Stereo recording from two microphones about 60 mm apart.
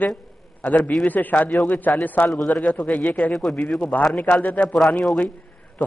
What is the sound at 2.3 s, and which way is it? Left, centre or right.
Speech, centre.